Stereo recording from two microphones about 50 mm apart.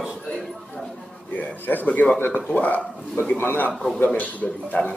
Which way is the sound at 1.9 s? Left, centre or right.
Left.